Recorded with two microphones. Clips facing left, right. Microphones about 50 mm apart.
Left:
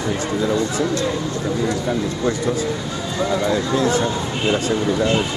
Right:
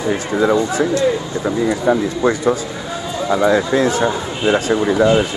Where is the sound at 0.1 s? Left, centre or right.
Right.